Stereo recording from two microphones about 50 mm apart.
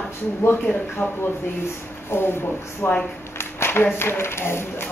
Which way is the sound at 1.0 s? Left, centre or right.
Left.